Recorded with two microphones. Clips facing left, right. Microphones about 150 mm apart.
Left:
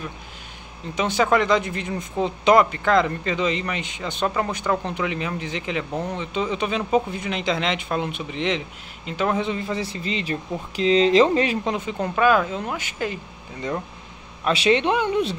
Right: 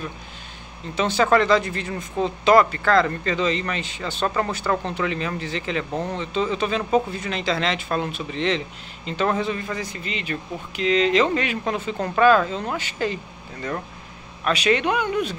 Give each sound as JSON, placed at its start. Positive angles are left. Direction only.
{"t": 0.9, "sound": "speech", "side_deg": 10}
{"t": 9.4, "sound": "speech", "side_deg": 20}
{"t": 11.6, "sound": "speech", "side_deg": 15}
{"t": 14.4, "sound": "speech", "side_deg": 25}